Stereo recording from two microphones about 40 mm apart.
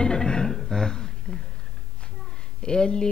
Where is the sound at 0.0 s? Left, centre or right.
Left.